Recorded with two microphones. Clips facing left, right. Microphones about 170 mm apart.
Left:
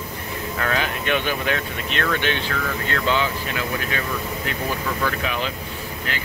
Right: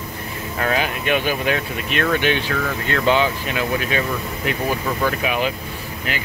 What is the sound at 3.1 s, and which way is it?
Speech, 20° right (ahead or behind).